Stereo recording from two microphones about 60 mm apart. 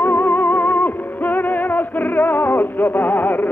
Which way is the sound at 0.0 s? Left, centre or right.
Left.